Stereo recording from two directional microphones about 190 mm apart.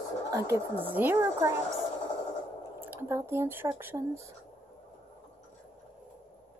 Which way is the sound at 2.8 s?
10° right (ahead or behind).